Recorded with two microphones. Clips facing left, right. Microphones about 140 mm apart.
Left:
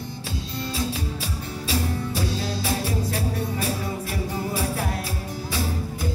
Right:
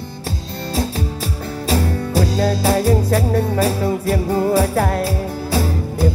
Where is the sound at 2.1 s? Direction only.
55° right (ahead or behind).